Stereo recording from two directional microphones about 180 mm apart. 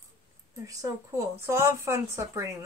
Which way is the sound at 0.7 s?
20° right (ahead or behind).